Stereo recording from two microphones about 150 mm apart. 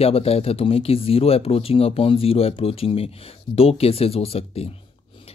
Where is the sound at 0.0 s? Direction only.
40° left (ahead or behind).